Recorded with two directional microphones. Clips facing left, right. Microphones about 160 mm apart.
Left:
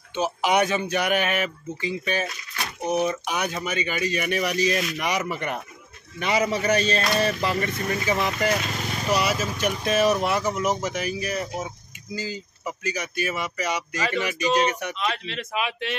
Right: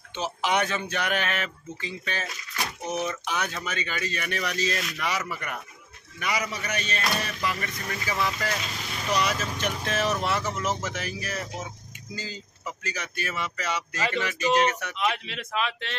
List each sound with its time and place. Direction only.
0.1 s speech: 15° left (ahead or behind)
9.1 s speech: 10° left (ahead or behind)
15.0 s speech: 10° right (ahead or behind)
15.5 s speech: 15° left (ahead or behind)